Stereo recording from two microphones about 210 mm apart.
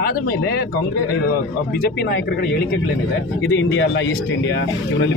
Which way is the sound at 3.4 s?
60° left (ahead or behind).